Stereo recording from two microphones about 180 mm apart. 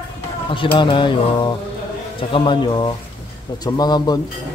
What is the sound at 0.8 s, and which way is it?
Speech, 25° left (ahead or behind).